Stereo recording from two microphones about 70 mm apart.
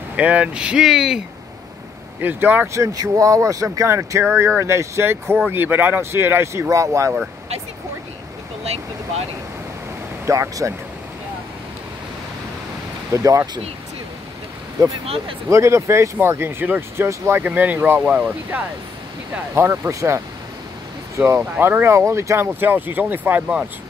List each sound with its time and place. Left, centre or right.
0.1 s speech: centre
2.2 s speech: right
2.7 s speech: right
6.5 s speech: right
10.2 s speech: right
13.1 s speech: right
15.5 s speech: right
16.2 s speech: right
17.5 s speech: right
18.0 s speech: centre
19.5 s speech: right
21.4 s speech: right